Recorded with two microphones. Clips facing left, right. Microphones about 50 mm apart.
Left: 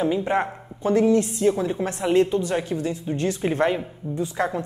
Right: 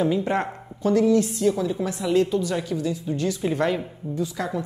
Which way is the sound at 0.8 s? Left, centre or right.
Left.